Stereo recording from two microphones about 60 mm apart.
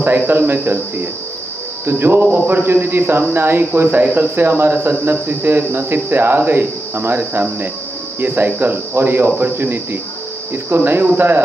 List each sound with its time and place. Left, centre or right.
0.0 s speech: right
8.2 s speech: right